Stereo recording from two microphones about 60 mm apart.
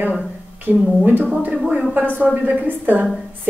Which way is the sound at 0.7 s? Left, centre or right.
Right.